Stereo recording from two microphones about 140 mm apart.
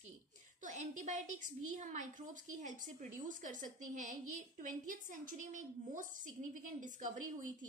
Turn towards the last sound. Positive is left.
turn(degrees=-70)  # may be behind; listen again after turning